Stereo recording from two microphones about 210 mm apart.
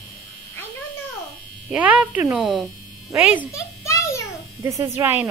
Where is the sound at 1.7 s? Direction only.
5° right (ahead or behind).